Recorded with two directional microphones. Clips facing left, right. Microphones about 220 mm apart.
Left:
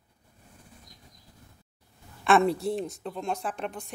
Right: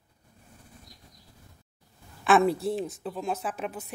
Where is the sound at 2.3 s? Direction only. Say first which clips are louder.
Even; centre (ahead or behind).